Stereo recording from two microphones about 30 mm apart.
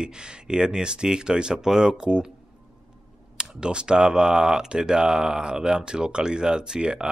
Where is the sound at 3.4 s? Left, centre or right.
Right.